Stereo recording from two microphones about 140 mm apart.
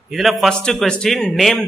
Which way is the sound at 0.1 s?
Centre (ahead or behind).